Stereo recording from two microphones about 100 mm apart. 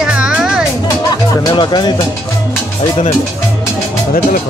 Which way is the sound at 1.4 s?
45° left (ahead or behind).